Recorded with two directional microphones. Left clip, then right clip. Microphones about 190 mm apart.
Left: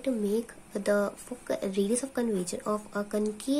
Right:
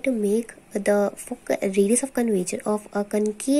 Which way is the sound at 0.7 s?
20° right (ahead or behind).